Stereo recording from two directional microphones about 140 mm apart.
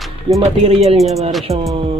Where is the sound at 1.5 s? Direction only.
25° right (ahead or behind).